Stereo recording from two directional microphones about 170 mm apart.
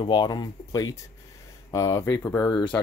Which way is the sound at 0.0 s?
25° left (ahead or behind).